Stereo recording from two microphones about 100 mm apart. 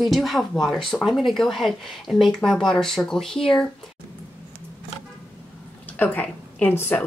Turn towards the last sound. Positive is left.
turn(degrees=20)  # may be behind; listen again after turning